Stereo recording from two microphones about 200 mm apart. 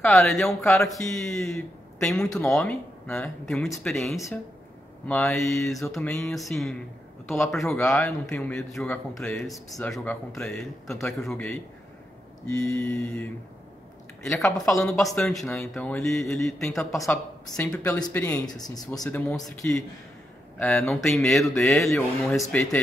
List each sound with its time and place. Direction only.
0.0 s a man's voice: centre (ahead or behind)
5.0 s a man's voice: 10° left (ahead or behind)
14.9 s a man's voice: centre (ahead or behind)
18.4 s speech: 20° left (ahead or behind)
19.0 s a man's voice: 5° left (ahead or behind)